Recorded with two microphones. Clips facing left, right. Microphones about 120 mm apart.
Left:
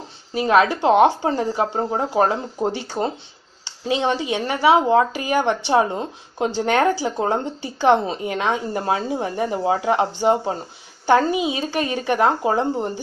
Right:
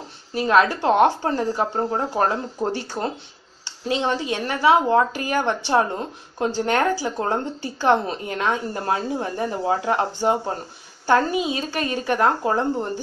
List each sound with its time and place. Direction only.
0.3 s speech: 15° left (ahead or behind)